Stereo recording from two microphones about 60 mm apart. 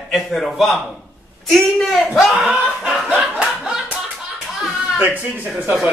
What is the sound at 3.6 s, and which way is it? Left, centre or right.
Clapping, centre.